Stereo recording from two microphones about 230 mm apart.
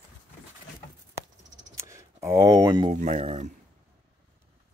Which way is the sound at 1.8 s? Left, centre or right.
Centre.